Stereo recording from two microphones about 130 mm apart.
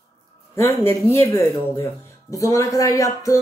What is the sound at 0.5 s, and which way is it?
Speech, 20° left (ahead or behind).